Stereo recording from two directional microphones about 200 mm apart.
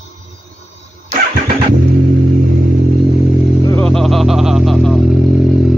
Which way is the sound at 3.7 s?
5° left (ahead or behind).